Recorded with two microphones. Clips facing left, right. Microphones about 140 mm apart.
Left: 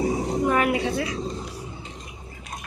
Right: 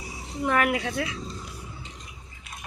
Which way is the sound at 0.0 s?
50° left (ahead or behind).